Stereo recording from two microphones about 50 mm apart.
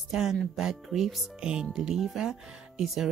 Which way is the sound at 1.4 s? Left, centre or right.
Centre.